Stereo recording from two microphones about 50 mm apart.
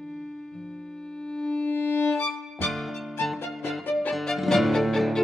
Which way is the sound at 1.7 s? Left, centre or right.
Left.